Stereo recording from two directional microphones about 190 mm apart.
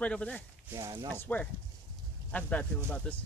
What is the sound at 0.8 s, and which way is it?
Speech, 15° right (ahead or behind).